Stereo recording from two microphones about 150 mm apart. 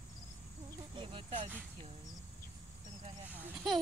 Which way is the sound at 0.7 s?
35° right (ahead or behind).